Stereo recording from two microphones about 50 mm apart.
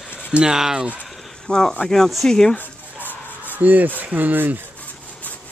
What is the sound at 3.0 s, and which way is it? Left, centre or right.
Music, left.